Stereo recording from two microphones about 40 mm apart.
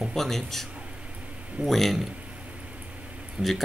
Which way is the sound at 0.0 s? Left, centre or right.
Centre.